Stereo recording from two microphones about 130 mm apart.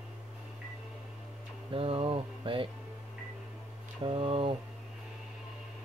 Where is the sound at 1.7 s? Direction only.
45° right (ahead or behind).